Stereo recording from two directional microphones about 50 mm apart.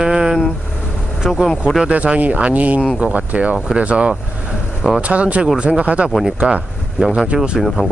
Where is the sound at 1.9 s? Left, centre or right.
Right.